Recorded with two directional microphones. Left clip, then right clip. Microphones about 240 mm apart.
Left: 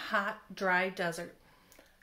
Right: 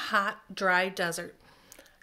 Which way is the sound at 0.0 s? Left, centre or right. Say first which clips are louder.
Right 5 dB; right.